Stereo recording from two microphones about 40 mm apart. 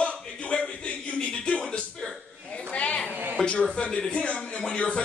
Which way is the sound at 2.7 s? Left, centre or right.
Left.